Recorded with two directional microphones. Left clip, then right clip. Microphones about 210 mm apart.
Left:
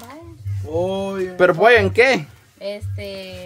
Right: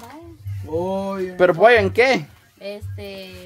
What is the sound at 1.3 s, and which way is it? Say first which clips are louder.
Speech: even; 5° left (ahead or behind).